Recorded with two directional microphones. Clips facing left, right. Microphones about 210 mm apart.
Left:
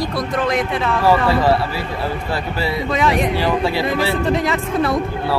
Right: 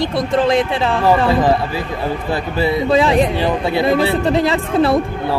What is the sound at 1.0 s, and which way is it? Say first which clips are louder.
Speech: right 1 dB; 15° right (ahead or behind).